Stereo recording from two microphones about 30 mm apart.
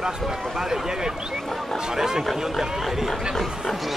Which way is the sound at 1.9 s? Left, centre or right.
Centre.